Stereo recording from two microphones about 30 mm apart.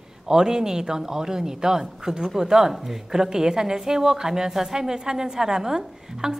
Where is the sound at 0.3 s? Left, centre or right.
Right.